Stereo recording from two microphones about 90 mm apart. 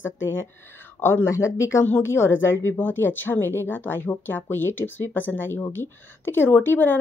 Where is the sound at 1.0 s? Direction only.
30° left (ahead or behind).